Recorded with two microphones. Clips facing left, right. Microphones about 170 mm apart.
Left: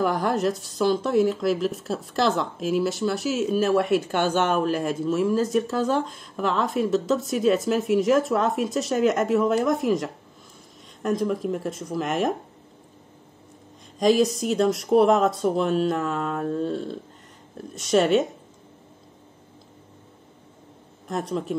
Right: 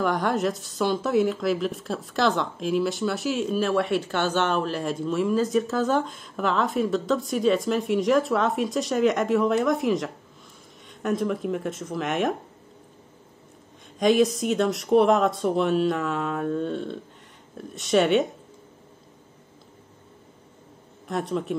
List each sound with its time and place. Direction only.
0.0 s speech: 5° left (ahead or behind)
13.9 s speech: centre (ahead or behind)
16.3 s a sound: 35° left (ahead or behind)
17.7 s speech: centre (ahead or behind)
21.1 s speech: centre (ahead or behind)